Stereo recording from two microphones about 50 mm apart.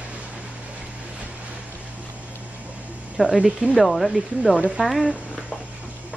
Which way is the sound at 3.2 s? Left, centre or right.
Centre.